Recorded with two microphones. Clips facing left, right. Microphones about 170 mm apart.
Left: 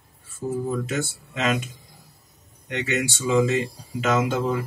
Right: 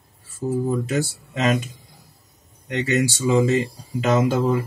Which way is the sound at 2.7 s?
35° right (ahead or behind).